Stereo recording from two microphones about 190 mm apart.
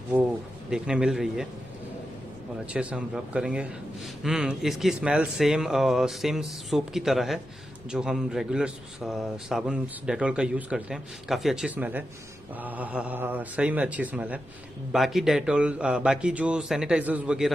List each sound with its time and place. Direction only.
0.1 s a man's voice: 10° right (ahead or behind)
2.7 s a man's voice: 5° right (ahead or behind)